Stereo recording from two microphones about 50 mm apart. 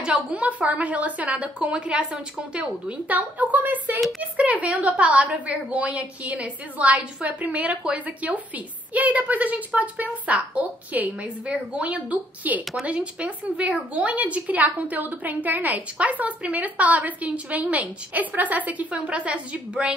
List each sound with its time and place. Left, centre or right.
0.3 s a woman's voice: right